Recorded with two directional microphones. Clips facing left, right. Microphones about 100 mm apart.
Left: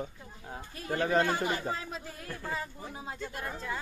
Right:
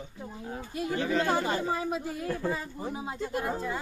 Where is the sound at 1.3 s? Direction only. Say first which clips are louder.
Right 3 dB; 30° right (ahead or behind).